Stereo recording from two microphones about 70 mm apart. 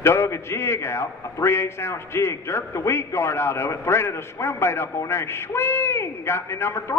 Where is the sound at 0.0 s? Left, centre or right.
Left.